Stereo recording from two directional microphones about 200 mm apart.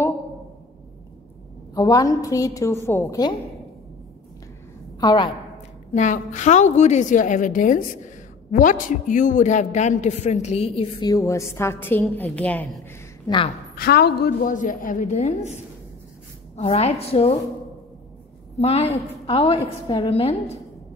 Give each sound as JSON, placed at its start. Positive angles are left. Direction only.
{"t": 1.8, "sound": "a woman's voice", "side_deg": 15}
{"t": 5.0, "sound": "a woman's voice", "side_deg": 20}
{"t": 5.9, "sound": "a man's voice", "side_deg": 35}
{"t": 13.3, "sound": "a woman's voice", "side_deg": 20}
{"t": 13.7, "sound": "a man's voice", "side_deg": 55}
{"t": 18.6, "sound": "a man's voice", "side_deg": 30}